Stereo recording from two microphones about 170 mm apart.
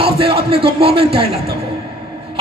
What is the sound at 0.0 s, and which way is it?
Speech, 35° right (ahead or behind).